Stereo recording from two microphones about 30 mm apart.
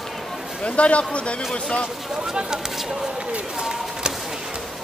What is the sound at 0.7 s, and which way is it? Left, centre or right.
A man's voice, left.